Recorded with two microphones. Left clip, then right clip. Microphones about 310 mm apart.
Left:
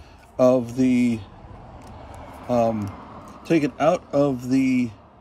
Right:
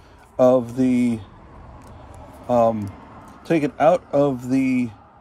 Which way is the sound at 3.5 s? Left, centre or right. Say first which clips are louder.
Right 3 dB; centre.